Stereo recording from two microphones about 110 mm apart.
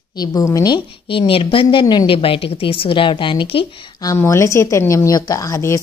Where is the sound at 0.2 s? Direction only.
35° left (ahead or behind).